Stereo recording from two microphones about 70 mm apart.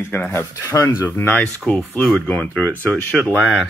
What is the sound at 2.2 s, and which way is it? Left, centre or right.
Speech, left.